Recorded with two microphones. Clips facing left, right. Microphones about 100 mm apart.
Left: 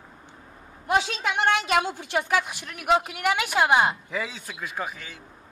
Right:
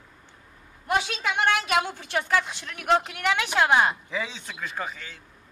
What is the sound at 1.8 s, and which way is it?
A man's voice, 15° left (ahead or behind).